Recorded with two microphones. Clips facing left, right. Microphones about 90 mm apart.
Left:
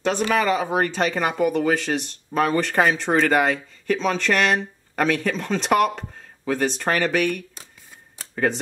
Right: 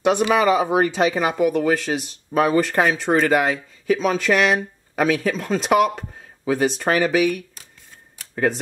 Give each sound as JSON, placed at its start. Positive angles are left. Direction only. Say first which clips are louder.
{"t": 0.0, "sound": "speech", "louder": "right 4 dB", "side_deg": -10}